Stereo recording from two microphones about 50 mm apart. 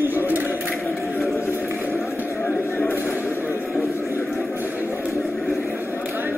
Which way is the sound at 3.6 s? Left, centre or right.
Centre.